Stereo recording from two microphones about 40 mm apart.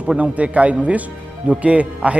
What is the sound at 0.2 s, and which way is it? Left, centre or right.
A man's voice, right.